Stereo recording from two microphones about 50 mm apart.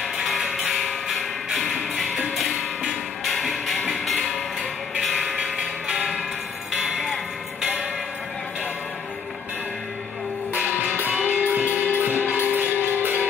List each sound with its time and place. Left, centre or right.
0.0 s music: centre
2.5 s music: centre
3.3 s music: centre
4.0 s a sound: centre
5.2 s a sound: centre
5.9 s bell: centre
6.7 s tick-tock: centre
10.5 s music: right